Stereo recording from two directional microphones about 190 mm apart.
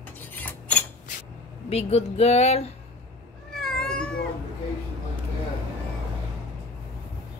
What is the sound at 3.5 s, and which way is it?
Cat, centre (ahead or behind).